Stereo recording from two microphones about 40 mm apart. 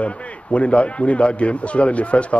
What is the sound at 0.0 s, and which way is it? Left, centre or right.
A man's voice, left.